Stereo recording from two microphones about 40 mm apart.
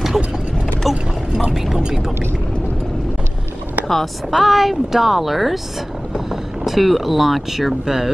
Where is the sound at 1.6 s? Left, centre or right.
Centre.